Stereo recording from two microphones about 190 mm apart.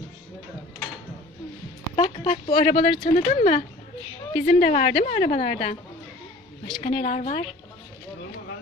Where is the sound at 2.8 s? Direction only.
40° left (ahead or behind).